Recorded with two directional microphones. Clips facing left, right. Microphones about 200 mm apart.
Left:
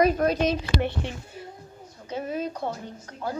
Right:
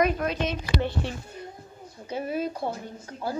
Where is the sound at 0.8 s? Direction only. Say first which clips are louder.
Even; 20° left (ahead or behind).